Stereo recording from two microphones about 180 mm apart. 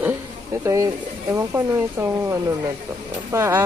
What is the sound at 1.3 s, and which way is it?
Speech, 15° right (ahead or behind).